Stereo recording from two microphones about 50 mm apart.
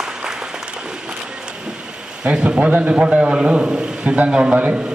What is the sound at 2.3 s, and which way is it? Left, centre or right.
A man's voice, right.